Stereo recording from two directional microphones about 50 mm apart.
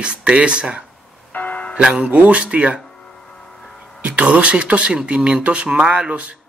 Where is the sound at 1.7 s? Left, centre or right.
Right.